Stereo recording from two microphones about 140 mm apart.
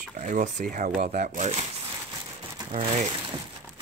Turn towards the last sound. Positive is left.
turn(degrees=-50)  # may be behind; listen again after turning